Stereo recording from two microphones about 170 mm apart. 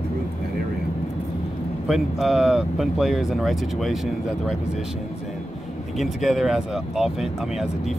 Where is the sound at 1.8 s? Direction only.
Centre (ahead or behind).